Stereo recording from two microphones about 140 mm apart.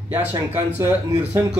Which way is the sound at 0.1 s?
15° right (ahead or behind).